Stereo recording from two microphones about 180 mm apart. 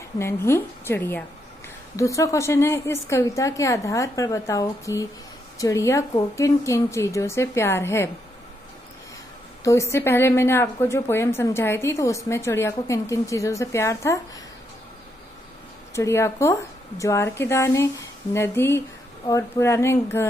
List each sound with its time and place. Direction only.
0.2 s a woman's voice: 15° left (ahead or behind)
9.6 s a woman's voice: 15° left (ahead or behind)
15.9 s a woman's voice: 15° left (ahead or behind)